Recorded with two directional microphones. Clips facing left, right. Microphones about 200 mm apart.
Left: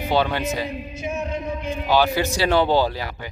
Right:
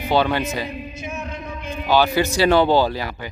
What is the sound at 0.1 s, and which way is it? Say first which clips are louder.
Speech: right 2 dB; 90° right.